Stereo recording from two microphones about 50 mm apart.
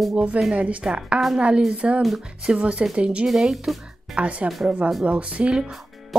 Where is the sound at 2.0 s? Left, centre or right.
Centre.